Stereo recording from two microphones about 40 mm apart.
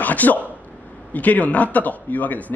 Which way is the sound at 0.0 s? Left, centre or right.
Left.